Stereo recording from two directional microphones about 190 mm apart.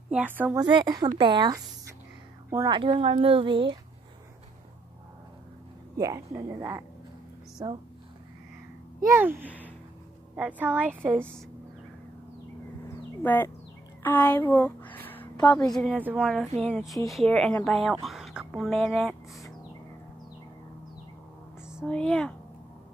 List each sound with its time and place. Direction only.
0.1 s speech: 5° right (ahead or behind)
0.6 s speech: 20° right (ahead or behind)
5.9 s speech: 15° right (ahead or behind)
9.0 s speech: 15° right (ahead or behind)
12.8 s a sound: 10° left (ahead or behind)
14.0 s speech: 10° left (ahead or behind)
21.6 s speech: centre (ahead or behind)